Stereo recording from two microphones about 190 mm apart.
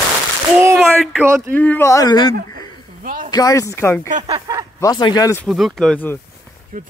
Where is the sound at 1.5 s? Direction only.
10° left (ahead or behind).